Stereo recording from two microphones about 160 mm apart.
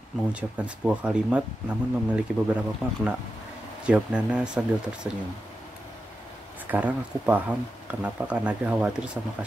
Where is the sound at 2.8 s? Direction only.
5° right (ahead or behind).